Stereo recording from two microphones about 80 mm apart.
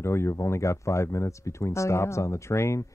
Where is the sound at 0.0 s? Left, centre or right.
Left.